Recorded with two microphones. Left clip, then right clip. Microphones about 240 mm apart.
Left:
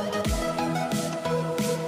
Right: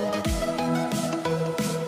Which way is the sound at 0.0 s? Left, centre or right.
Centre.